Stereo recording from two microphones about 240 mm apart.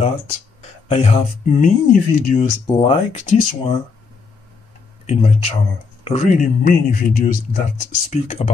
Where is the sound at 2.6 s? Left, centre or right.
Left.